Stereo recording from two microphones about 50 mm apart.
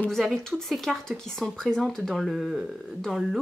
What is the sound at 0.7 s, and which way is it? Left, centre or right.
Speech, centre.